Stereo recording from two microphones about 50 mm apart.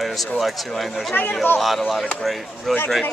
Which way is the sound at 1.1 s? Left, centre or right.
Left.